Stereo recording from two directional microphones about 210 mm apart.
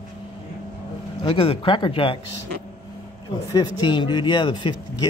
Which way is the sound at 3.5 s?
20° left (ahead or behind).